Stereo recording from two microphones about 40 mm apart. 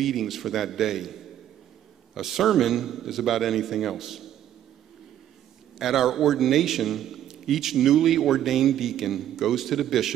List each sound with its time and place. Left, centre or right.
0.0 s a man's voice: centre
5.8 s a man's voice: centre